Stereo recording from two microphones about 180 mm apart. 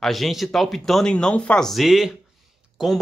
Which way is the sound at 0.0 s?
Centre (ahead or behind).